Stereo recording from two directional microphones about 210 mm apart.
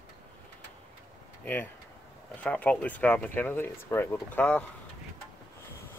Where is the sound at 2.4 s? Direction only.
5° left (ahead or behind).